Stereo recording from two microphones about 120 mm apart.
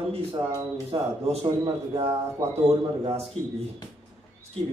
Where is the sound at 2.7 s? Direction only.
55° right (ahead or behind).